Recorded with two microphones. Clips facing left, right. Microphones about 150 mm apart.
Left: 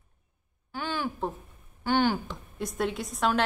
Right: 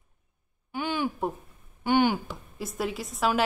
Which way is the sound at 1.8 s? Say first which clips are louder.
Right 2 dB; 15° right (ahead or behind).